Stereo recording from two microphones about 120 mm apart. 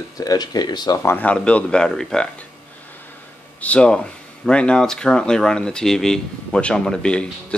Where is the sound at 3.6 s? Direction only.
10° left (ahead or behind).